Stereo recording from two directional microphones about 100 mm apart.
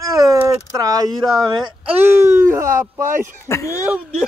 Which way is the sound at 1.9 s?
25° right (ahead or behind).